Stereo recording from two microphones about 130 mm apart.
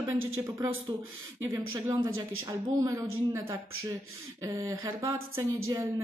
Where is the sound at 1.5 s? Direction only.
25° right (ahead or behind).